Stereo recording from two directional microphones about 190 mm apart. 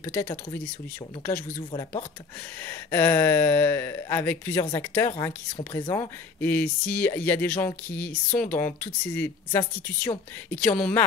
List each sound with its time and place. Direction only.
0.0 s speech: 10° left (ahead or behind)
1.7 s speech: 25° left (ahead or behind)
2.6 s speech: 10° left (ahead or behind)